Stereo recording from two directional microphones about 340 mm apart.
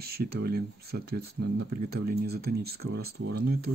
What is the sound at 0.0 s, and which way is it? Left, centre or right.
Speech, right.